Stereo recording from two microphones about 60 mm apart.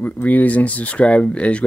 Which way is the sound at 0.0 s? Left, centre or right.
Left.